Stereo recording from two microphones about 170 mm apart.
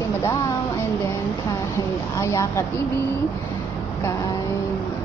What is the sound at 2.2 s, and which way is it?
Speech, 15° left (ahead or behind).